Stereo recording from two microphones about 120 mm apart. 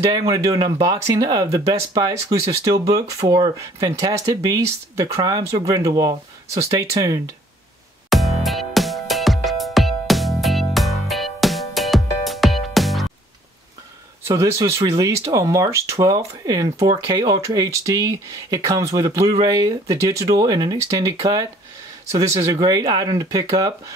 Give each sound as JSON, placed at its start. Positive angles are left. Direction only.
{"t": 0.3, "sound": "speech", "side_deg": -30}
{"t": 8.1, "sound": "music", "side_deg": 0}
{"t": 14.2, "sound": "speech", "side_deg": -25}